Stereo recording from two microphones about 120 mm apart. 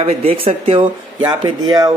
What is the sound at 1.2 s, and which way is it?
Speech, 35° right (ahead or behind).